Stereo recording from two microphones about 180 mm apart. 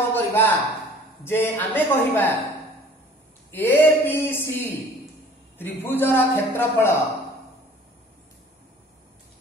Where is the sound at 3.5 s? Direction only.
10° left (ahead or behind).